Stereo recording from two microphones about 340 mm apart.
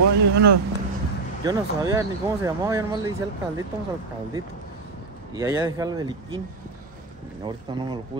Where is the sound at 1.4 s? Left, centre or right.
Centre.